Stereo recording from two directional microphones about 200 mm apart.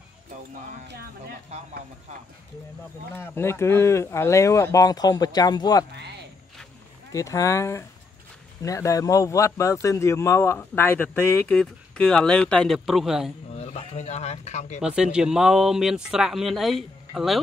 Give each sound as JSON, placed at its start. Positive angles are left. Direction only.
{"t": 1.5, "sound": "speech", "side_deg": -35}
{"t": 3.2, "sound": "speech", "side_deg": 10}
{"t": 5.9, "sound": "speech", "side_deg": -55}
{"t": 7.1, "sound": "speech", "side_deg": 15}
{"t": 13.5, "sound": "speech", "side_deg": 30}
{"t": 14.8, "sound": "speech", "side_deg": -5}